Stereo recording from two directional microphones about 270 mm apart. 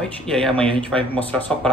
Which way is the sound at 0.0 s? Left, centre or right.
Centre.